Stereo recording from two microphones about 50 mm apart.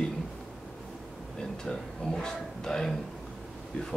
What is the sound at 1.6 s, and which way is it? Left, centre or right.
Speech, centre.